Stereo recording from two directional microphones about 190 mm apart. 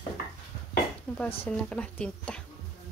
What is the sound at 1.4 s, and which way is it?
Speech, 5° left (ahead or behind).